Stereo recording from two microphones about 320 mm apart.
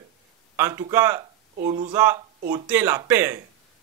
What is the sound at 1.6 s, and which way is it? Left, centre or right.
Speech, centre.